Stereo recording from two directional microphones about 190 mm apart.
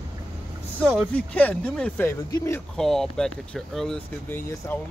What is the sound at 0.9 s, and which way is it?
Speech, 5° left (ahead or behind).